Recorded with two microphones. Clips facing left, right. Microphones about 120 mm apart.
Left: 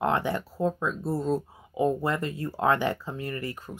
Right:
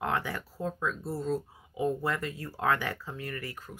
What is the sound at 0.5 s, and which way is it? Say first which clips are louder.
Speech: left 6 dB; 25° left (ahead or behind).